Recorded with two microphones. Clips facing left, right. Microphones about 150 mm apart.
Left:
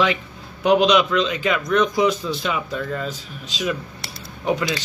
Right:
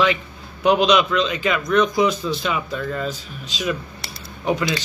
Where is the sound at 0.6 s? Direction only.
50° left (ahead or behind).